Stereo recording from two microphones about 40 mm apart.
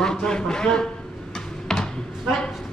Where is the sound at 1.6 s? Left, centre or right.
Centre.